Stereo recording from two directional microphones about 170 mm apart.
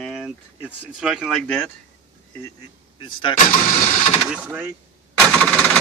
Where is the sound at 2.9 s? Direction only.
30° left (ahead or behind).